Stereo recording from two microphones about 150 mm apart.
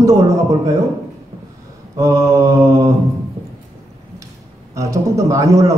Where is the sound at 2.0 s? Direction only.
20° right (ahead or behind).